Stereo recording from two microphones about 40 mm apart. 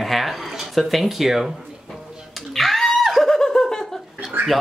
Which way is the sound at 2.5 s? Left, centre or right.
Centre.